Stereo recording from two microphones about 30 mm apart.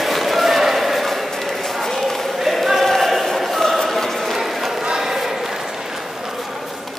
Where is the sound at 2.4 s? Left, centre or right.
Centre.